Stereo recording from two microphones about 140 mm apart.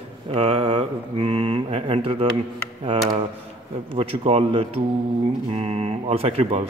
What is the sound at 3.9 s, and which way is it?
A man's voice, 40° right (ahead or behind).